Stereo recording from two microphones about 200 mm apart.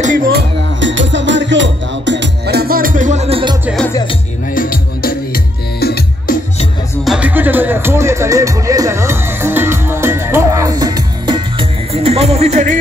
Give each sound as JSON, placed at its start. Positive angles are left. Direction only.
{"t": 0.0, "sound": "music", "side_deg": -45}
{"t": 4.6, "sound": "music", "side_deg": 45}
{"t": 7.1, "sound": "music", "side_deg": -5}